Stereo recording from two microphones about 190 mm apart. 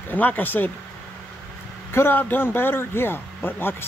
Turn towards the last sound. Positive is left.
turn(degrees=10)  # may be behind; listen again after turning